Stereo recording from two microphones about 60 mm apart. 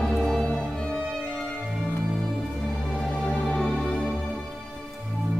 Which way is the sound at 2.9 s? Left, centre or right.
Centre.